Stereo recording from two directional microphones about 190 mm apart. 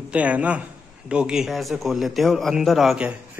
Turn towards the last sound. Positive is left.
turn(degrees=-5)  # may be behind; listen again after turning